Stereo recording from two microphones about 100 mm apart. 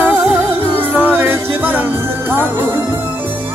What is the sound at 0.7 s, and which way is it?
Music, 20° right (ahead or behind).